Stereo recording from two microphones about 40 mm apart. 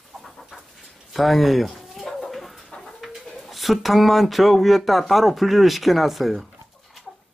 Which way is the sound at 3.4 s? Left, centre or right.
Centre.